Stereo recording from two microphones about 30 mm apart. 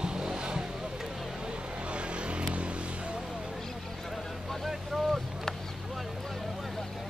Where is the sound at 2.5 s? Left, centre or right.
Right.